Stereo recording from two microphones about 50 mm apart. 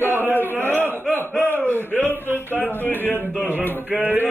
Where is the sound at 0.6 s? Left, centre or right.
Left.